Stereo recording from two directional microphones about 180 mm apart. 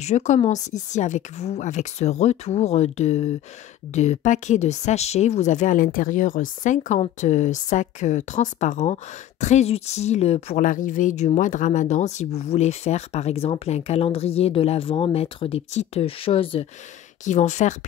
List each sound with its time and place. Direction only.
0.0 s speech: 40° left (ahead or behind)
17.2 s speech: 40° left (ahead or behind)